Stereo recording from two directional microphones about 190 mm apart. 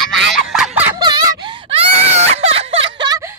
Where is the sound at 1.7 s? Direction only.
35° right (ahead or behind).